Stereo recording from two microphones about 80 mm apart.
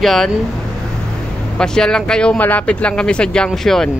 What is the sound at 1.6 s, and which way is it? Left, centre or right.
Speech, centre.